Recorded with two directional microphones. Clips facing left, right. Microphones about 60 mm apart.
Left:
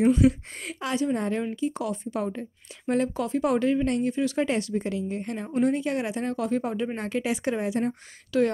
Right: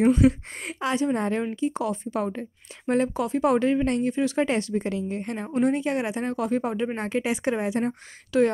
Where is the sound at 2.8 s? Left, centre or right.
Right.